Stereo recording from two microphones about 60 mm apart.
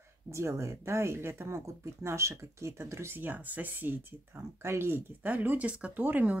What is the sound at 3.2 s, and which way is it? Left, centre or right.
Speech, right.